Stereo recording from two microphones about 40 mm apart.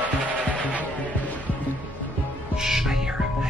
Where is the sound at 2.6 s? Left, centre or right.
Centre.